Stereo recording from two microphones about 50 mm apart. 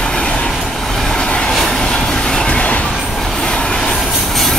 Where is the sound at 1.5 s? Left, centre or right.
Centre.